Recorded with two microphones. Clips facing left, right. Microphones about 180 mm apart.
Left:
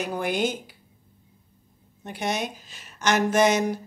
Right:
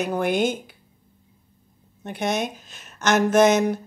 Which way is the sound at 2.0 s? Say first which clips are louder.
Right 3 dB; 55° right (ahead or behind).